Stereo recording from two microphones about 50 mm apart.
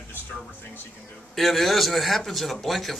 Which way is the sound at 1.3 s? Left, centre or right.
Centre.